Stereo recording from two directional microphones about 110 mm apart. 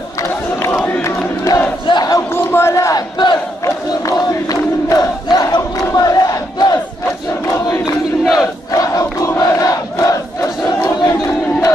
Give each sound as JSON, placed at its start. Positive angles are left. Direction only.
{"t": 1.0, "sound": "crowd", "side_deg": 30}
{"t": 1.9, "sound": "battle cry", "side_deg": 35}
{"t": 4.5, "sound": "crowd", "side_deg": 35}
{"t": 8.2, "sound": "crowd", "side_deg": 0}
{"t": 8.7, "sound": "crowd", "side_deg": 35}